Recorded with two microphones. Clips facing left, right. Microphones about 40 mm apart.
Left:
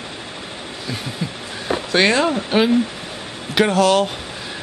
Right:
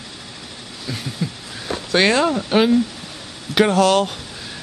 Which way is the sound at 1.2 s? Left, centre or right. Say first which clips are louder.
Left 1 dB; centre.